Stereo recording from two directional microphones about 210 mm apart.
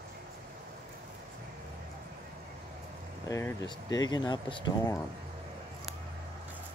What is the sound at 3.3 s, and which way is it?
Speech, 15° left (ahead or behind).